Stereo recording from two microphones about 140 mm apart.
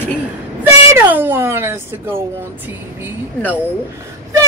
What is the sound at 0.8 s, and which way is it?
Speech, 15° right (ahead or behind).